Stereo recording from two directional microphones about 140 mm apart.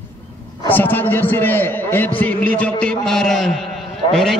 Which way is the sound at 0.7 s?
15° left (ahead or behind).